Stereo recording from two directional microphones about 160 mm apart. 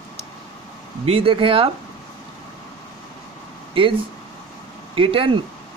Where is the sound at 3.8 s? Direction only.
35° right (ahead or behind).